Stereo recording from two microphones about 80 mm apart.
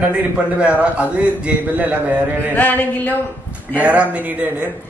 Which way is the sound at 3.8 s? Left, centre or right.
Centre.